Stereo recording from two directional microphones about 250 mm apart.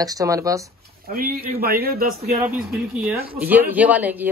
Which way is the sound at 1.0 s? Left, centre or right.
Right.